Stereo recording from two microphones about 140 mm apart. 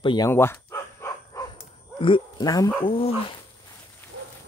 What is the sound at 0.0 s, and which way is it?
Speech, 35° left (ahead or behind).